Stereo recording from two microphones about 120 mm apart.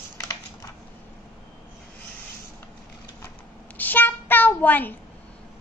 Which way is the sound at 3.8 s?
15° left (ahead or behind).